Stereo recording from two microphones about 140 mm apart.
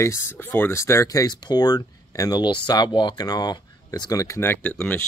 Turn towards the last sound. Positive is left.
turn(degrees=10)  # may be behind; listen again after turning